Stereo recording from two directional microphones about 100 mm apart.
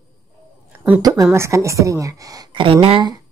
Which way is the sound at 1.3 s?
30° right (ahead or behind).